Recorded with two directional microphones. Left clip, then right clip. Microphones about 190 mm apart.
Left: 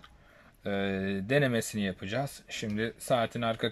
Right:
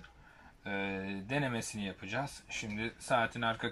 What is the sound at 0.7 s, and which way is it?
Speech, 45° left (ahead or behind).